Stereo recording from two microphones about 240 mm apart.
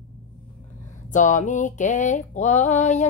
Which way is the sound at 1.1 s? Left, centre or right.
Left.